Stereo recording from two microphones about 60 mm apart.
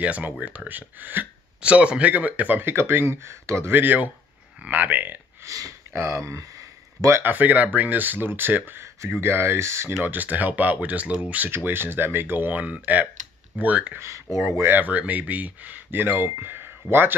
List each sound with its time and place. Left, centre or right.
0.0 s speech: right
1.6 s speech: centre
2.6 s speech: right
3.7 s speech: right
5.4 s speech: right
5.9 s speech: right
6.2 s a sound: right
7.2 s speech: right
10.0 s speech: right
11.5 s speech: right
13.9 s speech: right
14.8 s speech: right